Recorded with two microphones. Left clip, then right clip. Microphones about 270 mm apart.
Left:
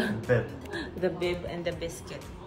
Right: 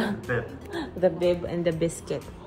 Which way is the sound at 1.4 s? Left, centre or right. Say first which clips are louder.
Right 6 dB; right.